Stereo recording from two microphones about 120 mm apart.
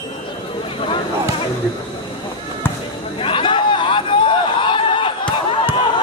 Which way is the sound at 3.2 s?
45° left (ahead or behind).